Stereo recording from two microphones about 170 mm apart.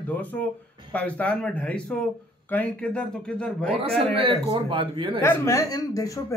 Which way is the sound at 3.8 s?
35° right (ahead or behind).